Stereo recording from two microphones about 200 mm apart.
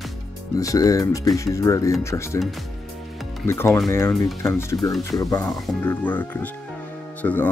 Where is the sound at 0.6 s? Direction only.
15° left (ahead or behind).